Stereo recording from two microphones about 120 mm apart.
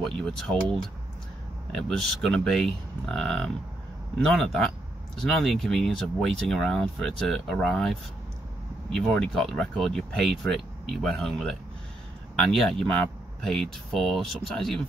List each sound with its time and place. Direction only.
0.2 s speech: 5° left (ahead or behind)